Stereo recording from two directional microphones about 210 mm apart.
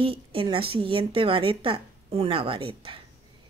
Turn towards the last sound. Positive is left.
turn(degrees=-25)  # may be behind; listen again after turning